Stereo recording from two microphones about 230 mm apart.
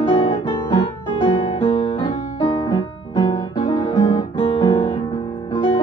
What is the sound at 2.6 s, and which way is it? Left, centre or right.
Guitar, centre.